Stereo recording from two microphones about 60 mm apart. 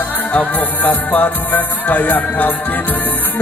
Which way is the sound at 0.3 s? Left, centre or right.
Left.